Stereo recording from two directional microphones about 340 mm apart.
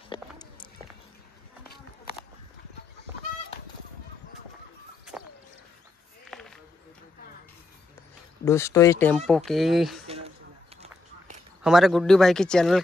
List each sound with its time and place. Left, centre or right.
0.1 s walk: centre
6.3 s a sound: centre
8.5 s speech: centre
10.0 s a sound: centre
10.8 s run: centre
11.6 s speech: centre